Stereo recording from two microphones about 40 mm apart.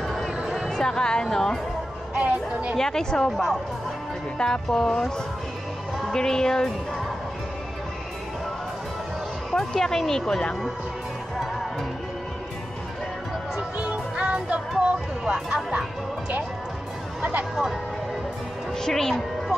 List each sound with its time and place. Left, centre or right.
0.0 s a sound: centre
0.7 s speech: centre
2.1 s speech: right
2.8 s speech: centre
3.3 s speech: centre
4.4 s speech: centre
9.6 s speech: centre
13.7 s music: right
17.2 s speech: right
18.8 s a woman's voice: centre